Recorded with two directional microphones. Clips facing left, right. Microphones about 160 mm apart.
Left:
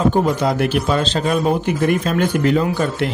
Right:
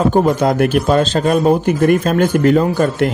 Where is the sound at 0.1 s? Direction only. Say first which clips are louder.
Right 4 dB; 50° right (ahead or behind).